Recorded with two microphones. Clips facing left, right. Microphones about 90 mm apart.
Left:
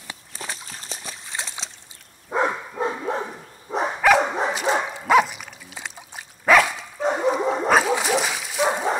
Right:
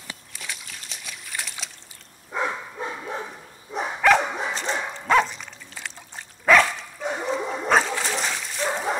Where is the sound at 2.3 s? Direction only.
40° left (ahead or behind).